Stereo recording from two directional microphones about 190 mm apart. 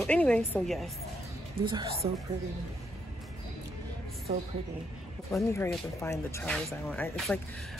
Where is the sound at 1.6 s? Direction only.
25° right (ahead or behind).